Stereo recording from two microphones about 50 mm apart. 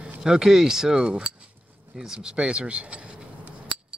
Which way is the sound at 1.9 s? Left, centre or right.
Centre.